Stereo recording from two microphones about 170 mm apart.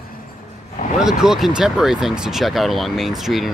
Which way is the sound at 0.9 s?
5° right (ahead or behind).